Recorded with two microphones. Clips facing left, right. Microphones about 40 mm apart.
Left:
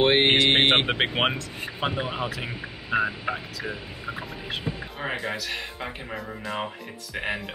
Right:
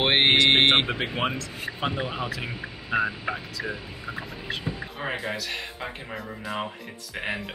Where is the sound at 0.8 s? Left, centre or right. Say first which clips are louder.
Left 3 dB; left.